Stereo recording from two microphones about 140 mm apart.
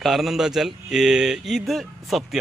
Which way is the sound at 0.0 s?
Centre (ahead or behind).